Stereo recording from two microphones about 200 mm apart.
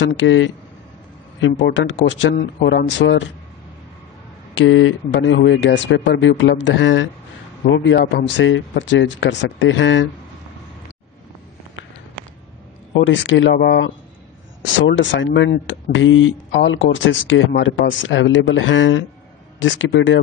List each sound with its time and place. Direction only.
0.2 s speech: 70° left (ahead or behind)
4.6 s speech: 70° left (ahead or behind)
12.9 s speech: 65° left (ahead or behind)